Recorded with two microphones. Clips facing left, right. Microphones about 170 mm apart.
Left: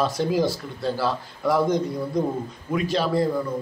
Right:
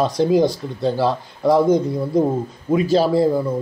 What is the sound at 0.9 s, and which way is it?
A man's voice, 25° right (ahead or behind).